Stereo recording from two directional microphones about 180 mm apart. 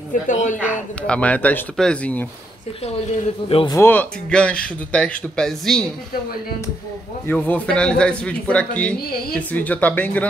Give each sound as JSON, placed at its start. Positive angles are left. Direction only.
{"t": 0.3, "sound": "speech", "side_deg": 45}
{"t": 1.0, "sound": "a man's voice", "side_deg": 5}
{"t": 2.8, "sound": "speech", "side_deg": 35}
{"t": 3.7, "sound": "speech", "side_deg": 10}
{"t": 7.2, "sound": "a man's voice", "side_deg": 10}